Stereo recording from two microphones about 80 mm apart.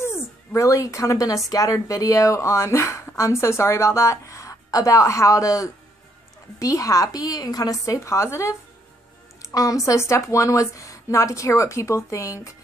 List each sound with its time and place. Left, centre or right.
0.0 s a woman's voice: left
9.4 s speech: left